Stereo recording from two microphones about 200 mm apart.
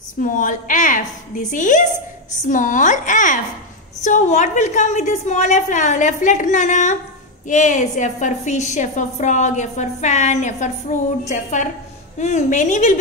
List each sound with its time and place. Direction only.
0.2 s a woman's voice: 40° left (ahead or behind)